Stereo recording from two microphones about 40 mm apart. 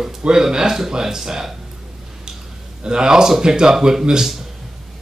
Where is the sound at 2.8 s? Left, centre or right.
Centre.